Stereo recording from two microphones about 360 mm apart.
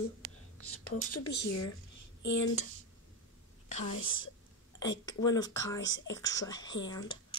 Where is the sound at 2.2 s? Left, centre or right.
Left.